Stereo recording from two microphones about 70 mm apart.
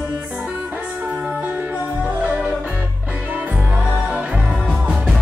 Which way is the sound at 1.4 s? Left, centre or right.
Right.